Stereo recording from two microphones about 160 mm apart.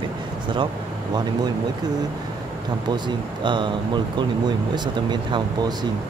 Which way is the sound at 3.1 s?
30° right (ahead or behind).